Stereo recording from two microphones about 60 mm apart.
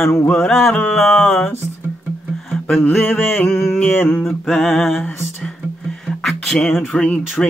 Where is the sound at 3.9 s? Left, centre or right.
Left.